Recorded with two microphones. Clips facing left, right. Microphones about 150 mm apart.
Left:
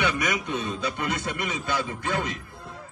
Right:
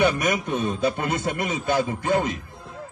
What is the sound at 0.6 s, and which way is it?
Speech, 50° right (ahead or behind).